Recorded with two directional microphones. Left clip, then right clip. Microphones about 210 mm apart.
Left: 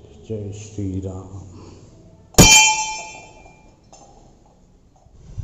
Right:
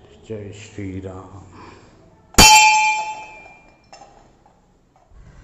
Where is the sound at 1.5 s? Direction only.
5° right (ahead or behind).